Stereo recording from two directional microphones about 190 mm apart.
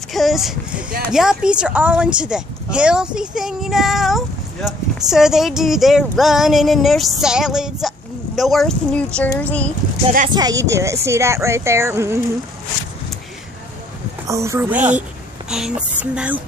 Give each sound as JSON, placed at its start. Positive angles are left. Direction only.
{"t": 0.1, "sound": "a sound", "side_deg": 0}
{"t": 1.1, "sound": "speech", "side_deg": -5}
{"t": 10.3, "sound": "speech", "side_deg": -20}
{"t": 14.2, "sound": "speech", "side_deg": -15}